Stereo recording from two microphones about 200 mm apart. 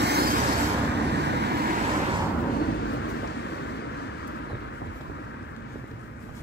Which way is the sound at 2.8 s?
70° left (ahead or behind).